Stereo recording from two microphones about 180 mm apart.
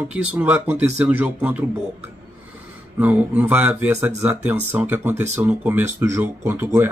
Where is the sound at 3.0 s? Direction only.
10° right (ahead or behind).